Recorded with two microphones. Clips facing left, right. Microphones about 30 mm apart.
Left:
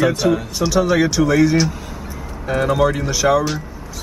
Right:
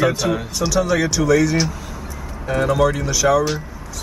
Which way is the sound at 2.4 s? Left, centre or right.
Centre.